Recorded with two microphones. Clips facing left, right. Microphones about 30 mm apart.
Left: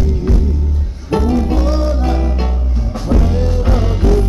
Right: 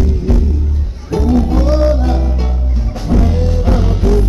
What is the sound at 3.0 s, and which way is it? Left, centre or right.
Music, centre.